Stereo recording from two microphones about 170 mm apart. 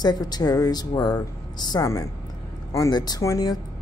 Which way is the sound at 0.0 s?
25° left (ahead or behind).